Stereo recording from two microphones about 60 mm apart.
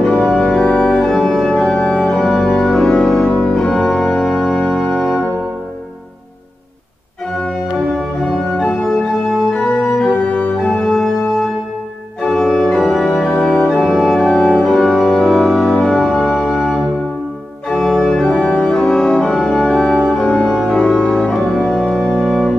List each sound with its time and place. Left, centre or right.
0.0 s organ: centre
7.4 s organ: centre
8.5 s organ: centre
12.2 s organ: centre
13.7 s organ: centre
14.2 s organ: centre